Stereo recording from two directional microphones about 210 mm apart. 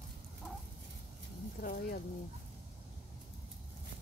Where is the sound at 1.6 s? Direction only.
50° left (ahead or behind).